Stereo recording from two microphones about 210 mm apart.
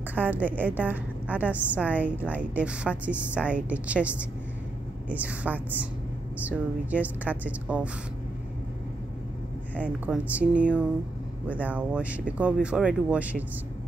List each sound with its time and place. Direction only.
0.1 s a woman's voice: 10° right (ahead or behind)
10.0 s a woman's voice: 5° right (ahead or behind)